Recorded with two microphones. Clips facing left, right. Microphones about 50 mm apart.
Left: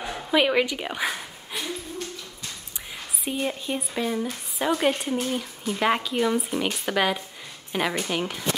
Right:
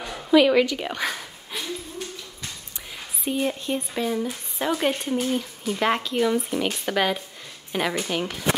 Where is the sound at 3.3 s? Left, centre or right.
Centre.